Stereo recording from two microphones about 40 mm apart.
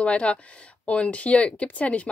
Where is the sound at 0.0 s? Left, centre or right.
Left.